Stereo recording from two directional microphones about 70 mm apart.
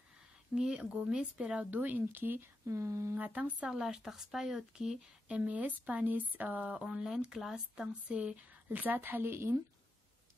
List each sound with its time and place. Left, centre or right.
0.6 s speech: centre; by 2.4 s right
2.6 s speech: right
3.2 s speech: right
8.6 s speech: right